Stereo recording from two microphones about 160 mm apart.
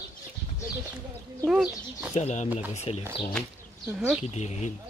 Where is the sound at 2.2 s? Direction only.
45° left (ahead or behind).